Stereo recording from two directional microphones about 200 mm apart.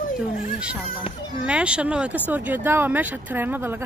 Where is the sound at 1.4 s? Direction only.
5° right (ahead or behind).